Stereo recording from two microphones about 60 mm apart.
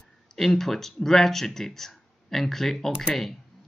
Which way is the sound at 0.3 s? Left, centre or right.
Centre.